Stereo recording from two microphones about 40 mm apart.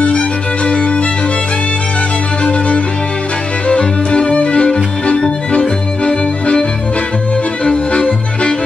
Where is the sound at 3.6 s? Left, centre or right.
Left.